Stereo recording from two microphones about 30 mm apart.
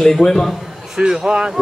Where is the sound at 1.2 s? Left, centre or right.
Right.